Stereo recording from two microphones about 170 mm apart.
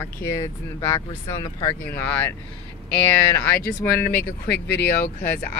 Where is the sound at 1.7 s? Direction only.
10° left (ahead or behind).